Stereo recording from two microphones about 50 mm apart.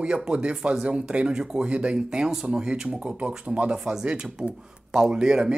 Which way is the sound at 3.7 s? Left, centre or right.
Centre.